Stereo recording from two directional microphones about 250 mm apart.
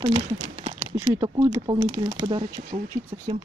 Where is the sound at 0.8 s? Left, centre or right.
Centre.